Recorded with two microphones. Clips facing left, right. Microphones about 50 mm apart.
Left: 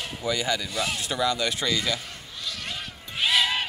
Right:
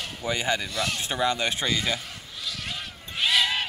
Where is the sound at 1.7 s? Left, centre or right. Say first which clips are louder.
Even; centre.